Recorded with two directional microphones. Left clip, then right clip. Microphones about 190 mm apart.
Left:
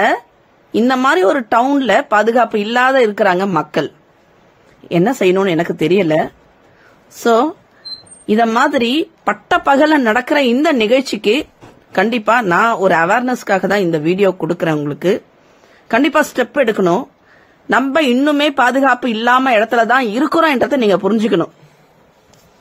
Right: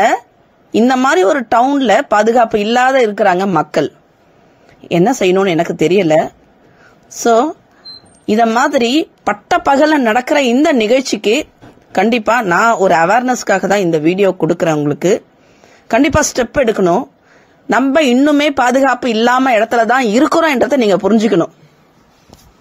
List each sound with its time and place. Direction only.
0.7 s speech: 15° right (ahead or behind)
3.1 s speech: 5° right (ahead or behind)
8.5 s a woman's voice: 20° right (ahead or behind)